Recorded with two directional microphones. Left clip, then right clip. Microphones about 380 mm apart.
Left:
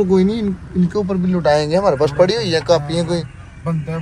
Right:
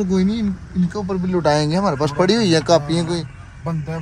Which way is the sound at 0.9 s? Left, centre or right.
Centre.